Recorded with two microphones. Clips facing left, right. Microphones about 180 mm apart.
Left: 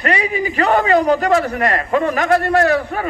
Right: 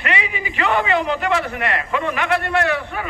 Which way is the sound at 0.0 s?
40° left (ahead or behind).